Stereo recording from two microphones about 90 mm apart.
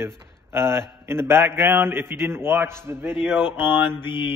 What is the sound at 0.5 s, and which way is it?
A man's voice, 30° right (ahead or behind).